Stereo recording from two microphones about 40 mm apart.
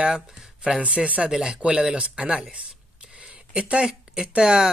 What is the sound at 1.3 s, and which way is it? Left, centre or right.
A man's voice, centre.